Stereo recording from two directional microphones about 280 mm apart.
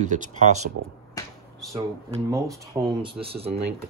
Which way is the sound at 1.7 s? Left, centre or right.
Centre.